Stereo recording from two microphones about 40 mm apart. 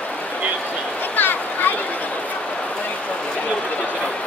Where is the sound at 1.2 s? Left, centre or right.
Left.